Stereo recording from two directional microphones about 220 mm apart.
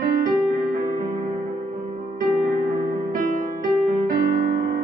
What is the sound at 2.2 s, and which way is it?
Music, 40° right (ahead or behind).